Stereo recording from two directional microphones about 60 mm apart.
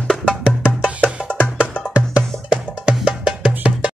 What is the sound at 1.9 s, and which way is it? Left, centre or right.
Music, right.